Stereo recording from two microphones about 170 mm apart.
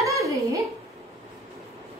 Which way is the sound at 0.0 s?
20° right (ahead or behind).